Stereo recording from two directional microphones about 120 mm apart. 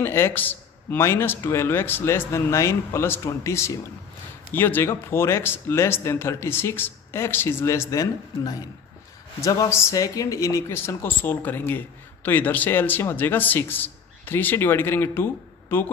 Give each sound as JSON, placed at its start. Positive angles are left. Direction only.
{"t": 0.0, "sound": "a man's voice", "side_deg": 20}